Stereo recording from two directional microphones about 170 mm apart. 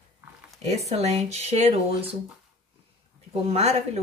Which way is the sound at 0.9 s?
40° right (ahead or behind).